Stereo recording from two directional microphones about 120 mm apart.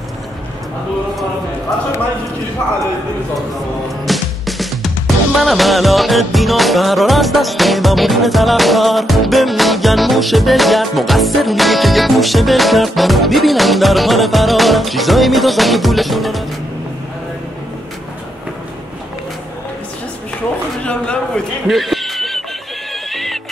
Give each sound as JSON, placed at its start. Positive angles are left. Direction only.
{"t": 4.0, "sound": "music", "side_deg": 0}
{"t": 20.8, "sound": "speech", "side_deg": 10}
{"t": 21.6, "sound": "a sound", "side_deg": 0}
{"t": 23.1, "sound": "music", "side_deg": 0}